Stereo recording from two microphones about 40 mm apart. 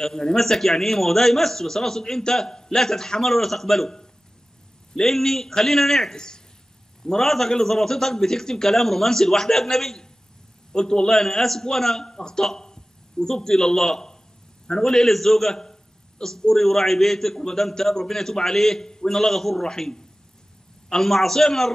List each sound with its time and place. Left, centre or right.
0.0 s a man's voice: centre
6.1 s a man's voice: centre